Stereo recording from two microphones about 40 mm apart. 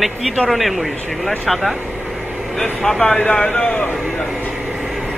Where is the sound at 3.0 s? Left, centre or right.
Left.